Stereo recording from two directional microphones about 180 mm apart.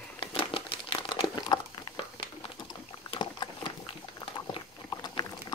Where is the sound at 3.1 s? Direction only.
25° left (ahead or behind).